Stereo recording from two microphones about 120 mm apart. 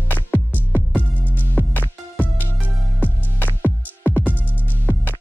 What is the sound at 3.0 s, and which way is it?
Music, 15° left (ahead or behind).